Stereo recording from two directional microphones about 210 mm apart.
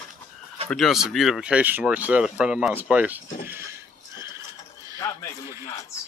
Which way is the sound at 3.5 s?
10° right (ahead or behind).